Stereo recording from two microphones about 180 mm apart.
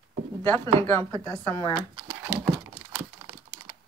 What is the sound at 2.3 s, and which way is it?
Computer keyboard, 15° right (ahead or behind).